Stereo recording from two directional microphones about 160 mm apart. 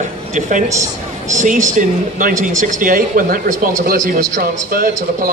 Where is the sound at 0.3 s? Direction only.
50° right (ahead or behind).